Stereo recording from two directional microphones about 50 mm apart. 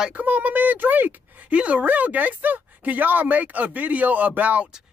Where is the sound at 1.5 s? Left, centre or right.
Right.